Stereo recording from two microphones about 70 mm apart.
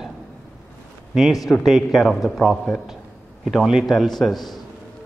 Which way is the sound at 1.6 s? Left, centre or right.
Centre.